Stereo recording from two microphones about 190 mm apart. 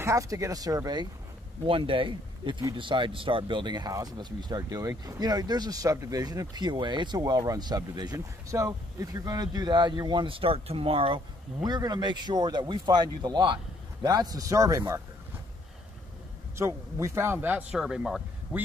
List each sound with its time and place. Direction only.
0.0 s speech: 15° right (ahead or behind)
16.5 s speech: 15° right (ahead or behind)